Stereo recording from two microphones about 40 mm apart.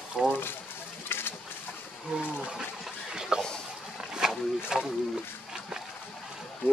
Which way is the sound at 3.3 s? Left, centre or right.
Centre.